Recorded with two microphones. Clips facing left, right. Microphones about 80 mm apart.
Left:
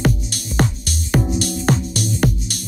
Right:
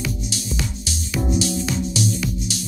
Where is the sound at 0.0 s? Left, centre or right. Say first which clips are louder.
Left 6 dB; left.